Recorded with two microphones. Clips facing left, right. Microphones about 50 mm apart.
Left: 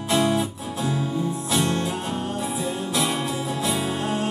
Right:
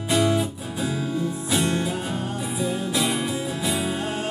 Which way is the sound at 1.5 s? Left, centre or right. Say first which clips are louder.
Even; right.